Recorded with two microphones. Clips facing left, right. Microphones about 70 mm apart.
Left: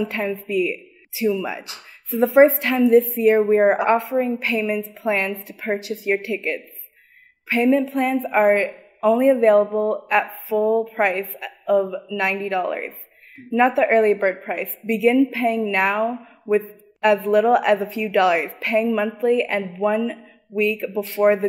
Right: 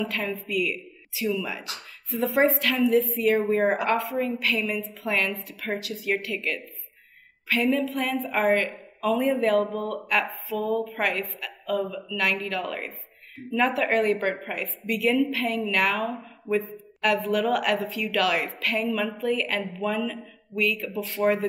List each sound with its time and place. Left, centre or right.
0.0 s a man's voice: left
3.4 s speech: centre
3.7 s a man's voice: left